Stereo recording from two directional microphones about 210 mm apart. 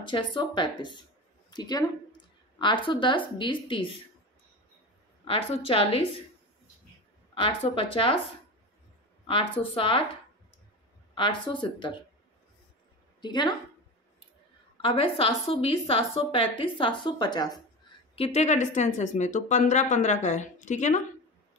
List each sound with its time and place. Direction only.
0.0 s a woman's voice: 20° left (ahead or behind)
5.2 s a woman's voice: 25° left (ahead or behind)
7.3 s a woman's voice: 25° left (ahead or behind)
9.2 s a woman's voice: 25° left (ahead or behind)
11.1 s a woman's voice: 25° left (ahead or behind)
13.2 s a woman's voice: 20° left (ahead or behind)
14.8 s a woman's voice: 25° left (ahead or behind)
18.1 s speech: 30° left (ahead or behind)